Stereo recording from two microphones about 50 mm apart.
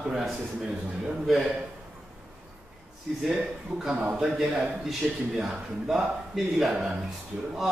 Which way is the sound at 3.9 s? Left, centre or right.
Right.